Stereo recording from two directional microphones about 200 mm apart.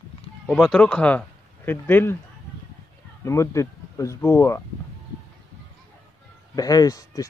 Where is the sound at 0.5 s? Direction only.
Centre (ahead or behind).